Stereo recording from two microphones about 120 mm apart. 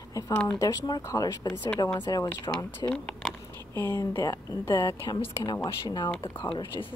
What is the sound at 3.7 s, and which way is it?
Speech, 25° left (ahead or behind).